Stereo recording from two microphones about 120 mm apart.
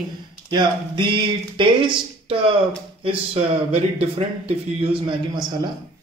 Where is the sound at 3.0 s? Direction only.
60° right (ahead or behind).